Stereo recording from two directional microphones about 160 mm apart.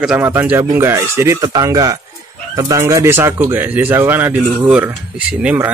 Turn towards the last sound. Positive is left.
turn(degrees=-10)  # may be behind; listen again after turning